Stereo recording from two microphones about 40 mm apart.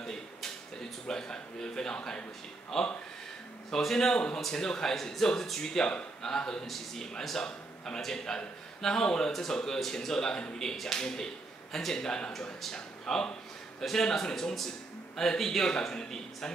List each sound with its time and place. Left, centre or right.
0.0 s a sound: centre
1.0 s speech: centre
2.7 s speech: centre